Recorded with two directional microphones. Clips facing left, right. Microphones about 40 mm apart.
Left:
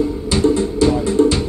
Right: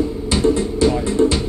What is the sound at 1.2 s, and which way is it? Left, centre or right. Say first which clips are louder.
Music: left 2 dB; right.